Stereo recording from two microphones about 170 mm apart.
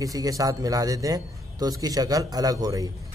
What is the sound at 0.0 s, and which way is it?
A man's voice, 20° right (ahead or behind).